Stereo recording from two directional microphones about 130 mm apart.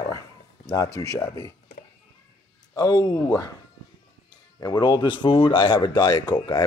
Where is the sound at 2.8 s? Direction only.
30° left (ahead or behind).